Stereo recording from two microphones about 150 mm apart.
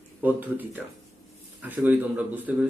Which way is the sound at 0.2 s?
10° right (ahead or behind).